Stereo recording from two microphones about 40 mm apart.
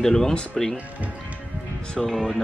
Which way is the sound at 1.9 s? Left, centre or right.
Centre.